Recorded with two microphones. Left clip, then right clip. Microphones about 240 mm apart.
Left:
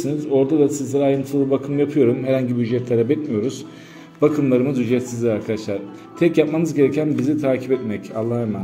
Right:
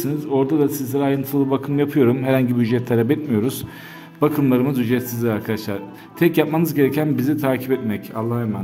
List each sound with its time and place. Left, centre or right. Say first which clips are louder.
0.0 s a man's voice: left 2 dB; centre